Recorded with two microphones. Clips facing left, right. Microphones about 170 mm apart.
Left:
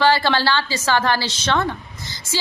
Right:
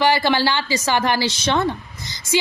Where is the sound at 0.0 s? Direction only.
15° right (ahead or behind).